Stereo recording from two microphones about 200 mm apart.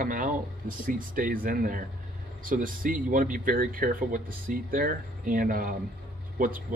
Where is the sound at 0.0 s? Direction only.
45° right (ahead or behind).